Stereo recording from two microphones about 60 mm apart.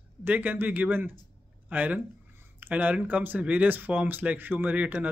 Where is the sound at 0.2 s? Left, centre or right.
Right.